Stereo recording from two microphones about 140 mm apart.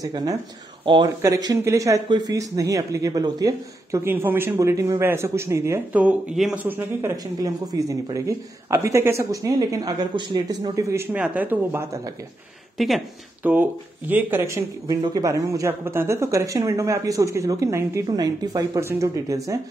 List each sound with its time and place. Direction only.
0.0 s speech: 25° right (ahead or behind)
1.2 s speech: 25° right (ahead or behind)
2.0 s speech: 30° right (ahead or behind)
6.0 s speech: 5° right (ahead or behind)
7.4 s speech: 25° right (ahead or behind)
12.7 s speech: centre (ahead or behind)
13.4 s speech: 15° right (ahead or behind)